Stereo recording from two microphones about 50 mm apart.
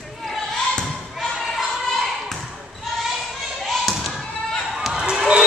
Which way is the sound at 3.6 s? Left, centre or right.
Centre.